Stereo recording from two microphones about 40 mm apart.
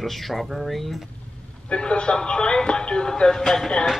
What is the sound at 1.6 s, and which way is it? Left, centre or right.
Speech, left.